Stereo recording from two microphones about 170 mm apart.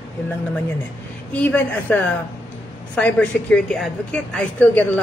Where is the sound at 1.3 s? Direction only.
10° left (ahead or behind).